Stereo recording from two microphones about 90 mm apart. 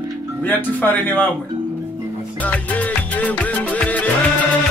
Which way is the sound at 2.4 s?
15° left (ahead or behind).